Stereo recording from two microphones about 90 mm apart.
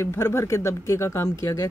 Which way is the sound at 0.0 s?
30° left (ahead or behind).